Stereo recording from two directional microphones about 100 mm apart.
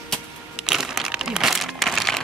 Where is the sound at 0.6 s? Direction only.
5° right (ahead or behind).